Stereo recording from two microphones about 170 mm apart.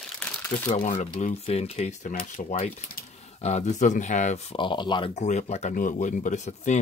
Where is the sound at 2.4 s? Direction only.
40° left (ahead or behind).